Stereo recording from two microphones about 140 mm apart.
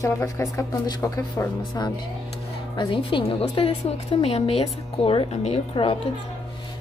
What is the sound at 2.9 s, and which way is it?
A woman's voice, 40° left (ahead or behind).